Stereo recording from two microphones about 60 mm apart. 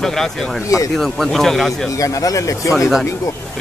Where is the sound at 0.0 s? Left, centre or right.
Centre.